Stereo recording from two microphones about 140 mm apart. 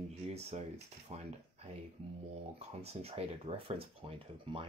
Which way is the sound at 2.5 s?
45° right (ahead or behind).